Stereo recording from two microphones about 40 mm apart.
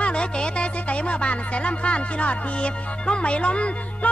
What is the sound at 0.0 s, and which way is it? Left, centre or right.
Speech, left.